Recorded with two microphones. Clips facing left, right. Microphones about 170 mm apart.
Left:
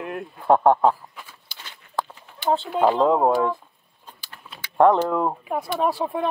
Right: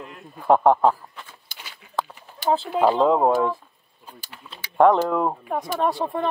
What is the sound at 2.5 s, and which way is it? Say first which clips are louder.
Speech: even; centre (ahead or behind).